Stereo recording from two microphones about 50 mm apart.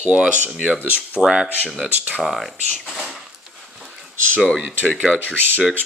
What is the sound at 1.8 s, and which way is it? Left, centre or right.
Speech, right.